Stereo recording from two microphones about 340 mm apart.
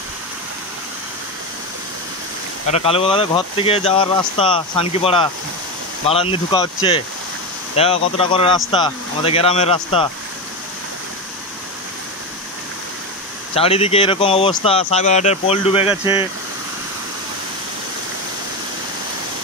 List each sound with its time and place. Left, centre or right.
2.7 s speech: centre
7.7 s speech: centre
13.6 s speech: centre